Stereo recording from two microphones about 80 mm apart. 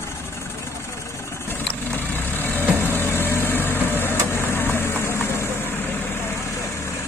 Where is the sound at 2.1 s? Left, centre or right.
Left.